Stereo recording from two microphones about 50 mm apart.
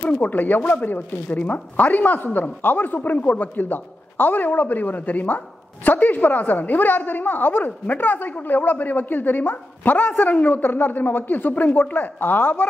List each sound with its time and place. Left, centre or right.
0.0 s speech: left
0.3 s a woman's voice: left